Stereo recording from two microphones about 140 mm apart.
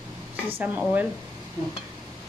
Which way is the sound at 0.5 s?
10° right (ahead or behind).